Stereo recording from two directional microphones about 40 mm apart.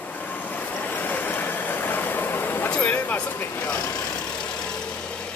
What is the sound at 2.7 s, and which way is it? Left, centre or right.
Vehicle, left.